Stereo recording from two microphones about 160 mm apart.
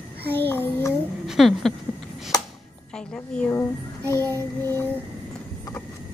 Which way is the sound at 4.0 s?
20° right (ahead or behind).